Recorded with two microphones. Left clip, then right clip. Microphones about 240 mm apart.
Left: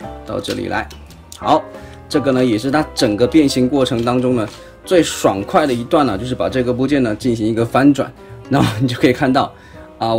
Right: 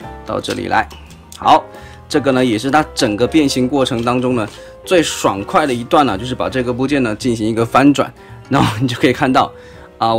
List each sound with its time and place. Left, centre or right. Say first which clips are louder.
0.3 s speech: right 4 dB; centre
2.0 s speech: right 1 dB; centre